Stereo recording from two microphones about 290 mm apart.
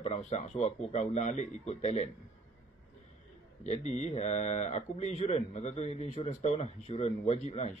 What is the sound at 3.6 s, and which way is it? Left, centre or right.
A man's voice, left.